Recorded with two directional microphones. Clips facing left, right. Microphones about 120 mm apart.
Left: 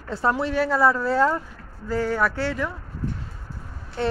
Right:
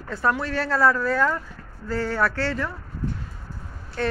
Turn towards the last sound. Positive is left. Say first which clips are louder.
# left 1 dB
turn(degrees=20)  # may be behind; listen again after turning